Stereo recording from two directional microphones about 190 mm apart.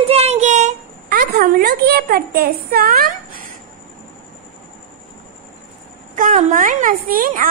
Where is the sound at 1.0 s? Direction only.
55° right (ahead or behind).